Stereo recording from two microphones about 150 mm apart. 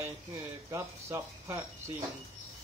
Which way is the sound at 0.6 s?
20° right (ahead or behind).